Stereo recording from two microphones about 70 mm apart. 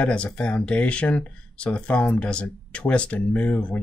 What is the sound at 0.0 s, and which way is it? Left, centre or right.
Speech, centre.